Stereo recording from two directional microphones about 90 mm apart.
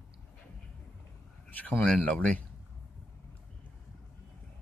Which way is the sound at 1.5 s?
20° left (ahead or behind).